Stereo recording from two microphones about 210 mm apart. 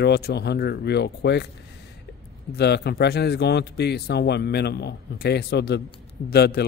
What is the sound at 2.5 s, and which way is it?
Speech, 50° left (ahead or behind).